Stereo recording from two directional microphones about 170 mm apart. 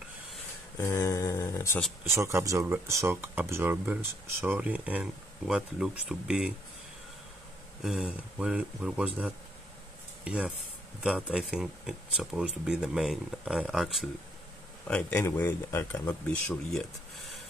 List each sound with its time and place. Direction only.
0.7 s a sound: 15° left (ahead or behind)
2.0 s speech: 15° right (ahead or behind)
7.8 s speech: 5° right (ahead or behind)